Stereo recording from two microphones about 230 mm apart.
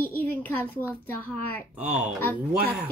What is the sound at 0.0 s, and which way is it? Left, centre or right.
A child's voice, centre.